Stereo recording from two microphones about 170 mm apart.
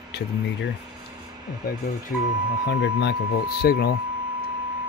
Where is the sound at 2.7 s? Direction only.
80° left.